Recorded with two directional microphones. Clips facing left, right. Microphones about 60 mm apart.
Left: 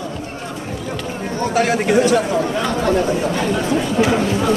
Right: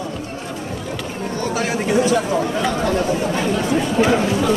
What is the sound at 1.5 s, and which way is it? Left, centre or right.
Speech, left.